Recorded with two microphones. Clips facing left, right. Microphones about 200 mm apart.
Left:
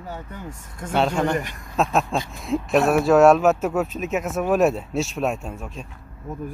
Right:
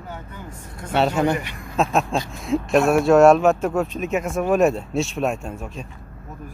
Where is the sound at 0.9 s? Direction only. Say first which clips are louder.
Right 2 dB; 5° right (ahead or behind).